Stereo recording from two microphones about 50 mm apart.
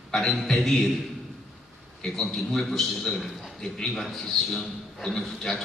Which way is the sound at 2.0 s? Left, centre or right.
Centre.